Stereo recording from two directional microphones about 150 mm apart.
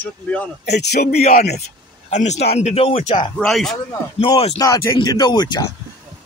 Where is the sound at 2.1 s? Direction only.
50° left (ahead or behind); by 3.3 s 35° left (ahead or behind).